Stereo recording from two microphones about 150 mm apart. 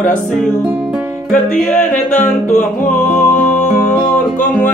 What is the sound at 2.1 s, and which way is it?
Speech, 55° left (ahead or behind).